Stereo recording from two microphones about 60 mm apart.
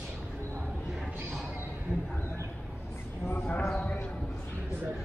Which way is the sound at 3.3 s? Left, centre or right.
Left.